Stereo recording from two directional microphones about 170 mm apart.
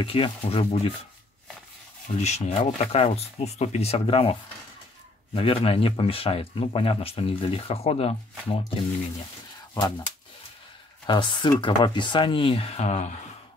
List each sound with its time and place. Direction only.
0.0 s speech: 30° left (ahead or behind)
2.2 s speech: 40° left (ahead or behind)
9.8 s speech: 25° left (ahead or behind)
11.1 s speech: 25° left (ahead or behind); by 13.1 s 45° left (ahead or behind)